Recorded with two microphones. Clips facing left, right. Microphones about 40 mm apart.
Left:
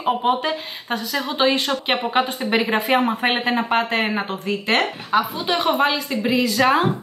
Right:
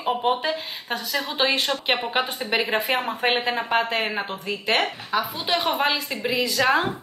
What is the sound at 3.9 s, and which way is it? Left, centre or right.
Speech, left.